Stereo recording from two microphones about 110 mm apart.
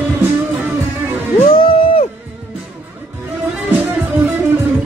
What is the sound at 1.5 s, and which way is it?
Music, 55° left (ahead or behind).